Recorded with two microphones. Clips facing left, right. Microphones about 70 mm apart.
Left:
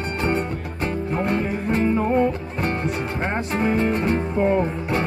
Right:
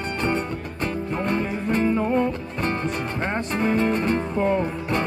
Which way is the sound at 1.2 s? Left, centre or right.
Centre.